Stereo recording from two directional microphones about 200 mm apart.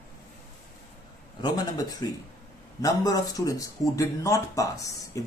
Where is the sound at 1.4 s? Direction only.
20° left (ahead or behind).